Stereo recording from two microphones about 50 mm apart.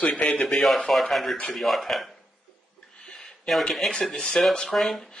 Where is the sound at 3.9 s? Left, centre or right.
Centre.